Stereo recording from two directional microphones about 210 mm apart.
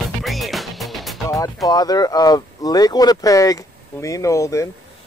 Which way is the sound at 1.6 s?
20° left (ahead or behind).